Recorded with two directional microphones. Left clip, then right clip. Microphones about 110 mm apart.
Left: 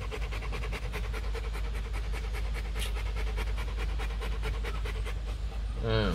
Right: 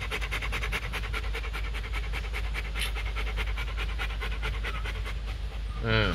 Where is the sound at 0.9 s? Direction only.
20° left (ahead or behind).